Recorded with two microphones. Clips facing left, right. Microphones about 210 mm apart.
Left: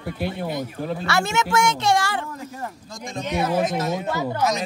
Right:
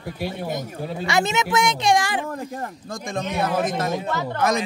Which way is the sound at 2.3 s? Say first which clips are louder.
Right 3 dB; 55° right (ahead or behind).